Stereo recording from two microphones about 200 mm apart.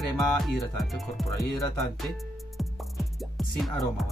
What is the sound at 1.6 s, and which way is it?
Music, 15° left (ahead or behind).